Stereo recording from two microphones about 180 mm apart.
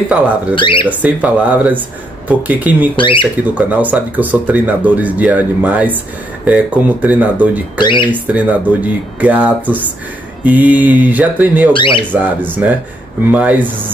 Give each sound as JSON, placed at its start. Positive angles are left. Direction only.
{"t": 0.6, "sound": "speech", "side_deg": 25}
{"t": 0.8, "sound": "speech", "side_deg": -10}
{"t": 3.0, "sound": "speech", "side_deg": 30}
{"t": 3.5, "sound": "speech", "side_deg": -10}
{"t": 7.8, "sound": "speech", "side_deg": 25}
{"t": 8.1, "sound": "speech", "side_deg": -10}
{"t": 11.7, "sound": "speech", "side_deg": 25}
{"t": 12.1, "sound": "speech", "side_deg": -10}